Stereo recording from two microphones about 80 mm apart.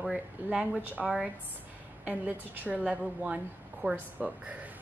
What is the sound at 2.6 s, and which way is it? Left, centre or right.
A woman's voice, centre.